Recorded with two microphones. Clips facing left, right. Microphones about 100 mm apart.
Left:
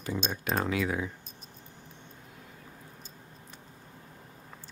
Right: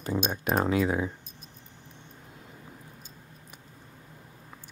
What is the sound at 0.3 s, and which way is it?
Speech, 20° right (ahead or behind).